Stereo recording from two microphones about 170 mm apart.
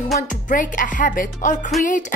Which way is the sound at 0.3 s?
50° left (ahead or behind).